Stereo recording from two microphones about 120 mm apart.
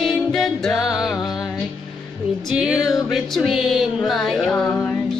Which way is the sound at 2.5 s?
5° right (ahead or behind).